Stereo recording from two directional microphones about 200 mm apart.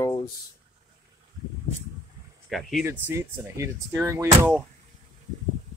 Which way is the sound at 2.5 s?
5° right (ahead or behind).